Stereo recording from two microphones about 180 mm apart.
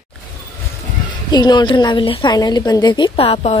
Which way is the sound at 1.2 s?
25° left (ahead or behind).